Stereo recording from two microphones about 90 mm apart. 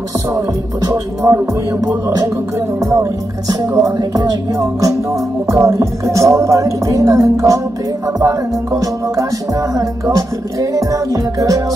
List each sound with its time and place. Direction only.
0.8 s music: 35° right (ahead or behind)
2.8 s music: 35° right (ahead or behind)